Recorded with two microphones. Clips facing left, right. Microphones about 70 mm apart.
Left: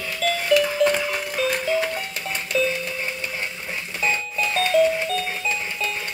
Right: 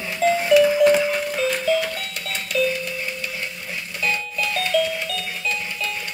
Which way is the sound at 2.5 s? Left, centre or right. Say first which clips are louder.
Right 1 dB; left.